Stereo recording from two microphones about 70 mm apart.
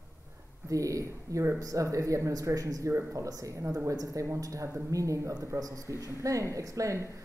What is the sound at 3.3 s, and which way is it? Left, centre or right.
A man's voice, right.